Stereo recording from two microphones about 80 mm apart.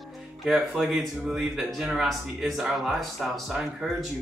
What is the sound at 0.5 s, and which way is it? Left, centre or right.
Speech, centre.